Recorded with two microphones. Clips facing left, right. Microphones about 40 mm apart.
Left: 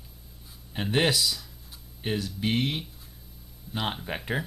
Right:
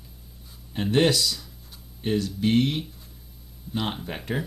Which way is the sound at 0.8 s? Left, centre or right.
Centre.